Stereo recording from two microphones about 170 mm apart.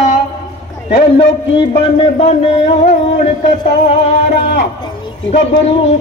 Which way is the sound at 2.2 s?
40° left (ahead or behind).